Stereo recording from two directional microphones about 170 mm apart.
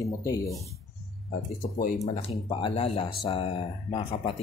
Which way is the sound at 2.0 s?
35° left (ahead or behind).